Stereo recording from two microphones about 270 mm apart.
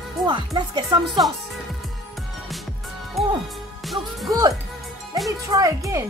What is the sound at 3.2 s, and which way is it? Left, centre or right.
Music, centre.